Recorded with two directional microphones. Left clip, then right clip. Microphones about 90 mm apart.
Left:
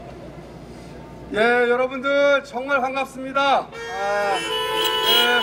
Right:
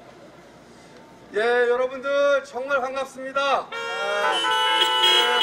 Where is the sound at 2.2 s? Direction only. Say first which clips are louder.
Left 1 dB; 45° right (ahead or behind).